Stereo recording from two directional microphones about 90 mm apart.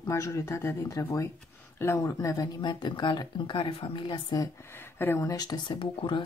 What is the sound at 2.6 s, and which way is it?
Speech, 55° left (ahead or behind).